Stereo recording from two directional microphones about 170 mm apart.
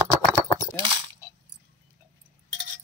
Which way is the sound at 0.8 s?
30° right (ahead or behind).